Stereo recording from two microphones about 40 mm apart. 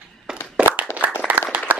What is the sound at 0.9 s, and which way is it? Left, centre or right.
Clapping, left.